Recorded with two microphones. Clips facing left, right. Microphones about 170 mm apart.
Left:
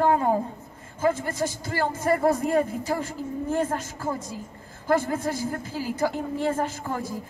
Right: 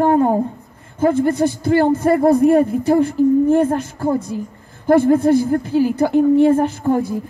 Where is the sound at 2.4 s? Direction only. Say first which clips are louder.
Right 11 dB; 60° right (ahead or behind).